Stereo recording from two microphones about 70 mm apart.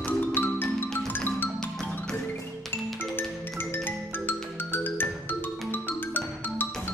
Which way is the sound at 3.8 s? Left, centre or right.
Left.